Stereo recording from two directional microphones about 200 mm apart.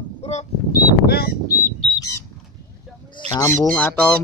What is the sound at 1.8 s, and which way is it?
Bird, 20° left (ahead or behind).